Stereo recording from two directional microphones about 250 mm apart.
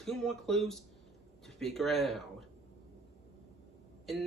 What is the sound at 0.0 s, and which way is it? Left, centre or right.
Speech, centre.